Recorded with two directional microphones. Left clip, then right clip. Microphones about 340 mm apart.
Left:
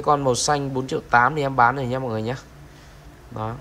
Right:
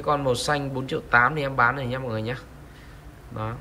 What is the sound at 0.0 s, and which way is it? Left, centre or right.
Speech, centre.